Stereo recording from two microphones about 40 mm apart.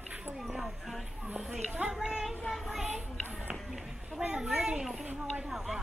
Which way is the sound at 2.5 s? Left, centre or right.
Centre.